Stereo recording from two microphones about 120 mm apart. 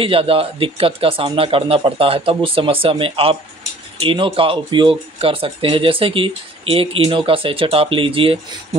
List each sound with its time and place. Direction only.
0.0 s speech: 50° right (ahead or behind)